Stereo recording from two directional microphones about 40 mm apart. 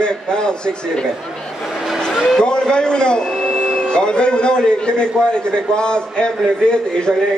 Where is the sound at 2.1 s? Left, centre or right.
Centre.